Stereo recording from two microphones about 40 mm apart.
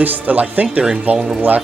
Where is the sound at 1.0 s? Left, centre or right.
Right.